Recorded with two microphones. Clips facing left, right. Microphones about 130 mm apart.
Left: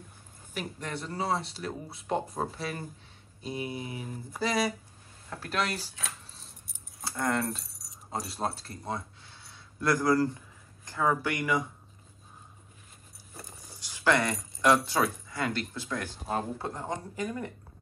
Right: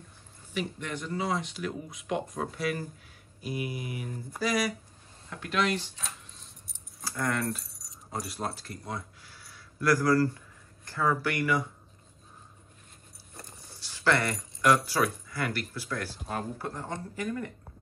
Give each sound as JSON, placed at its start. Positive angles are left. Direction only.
{"t": 0.5, "sound": "speech", "side_deg": 40}
{"t": 5.3, "sound": "speech", "side_deg": 35}
{"t": 7.1, "sound": "speech", "side_deg": 25}
{"t": 7.6, "sound": "keys jangling", "side_deg": 0}
{"t": 8.1, "sound": "speech", "side_deg": 25}
{"t": 13.3, "sound": "a sound", "side_deg": 0}
{"t": 13.7, "sound": "speech", "side_deg": 15}